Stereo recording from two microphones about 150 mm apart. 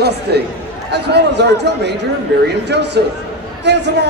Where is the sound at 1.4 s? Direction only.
90° right.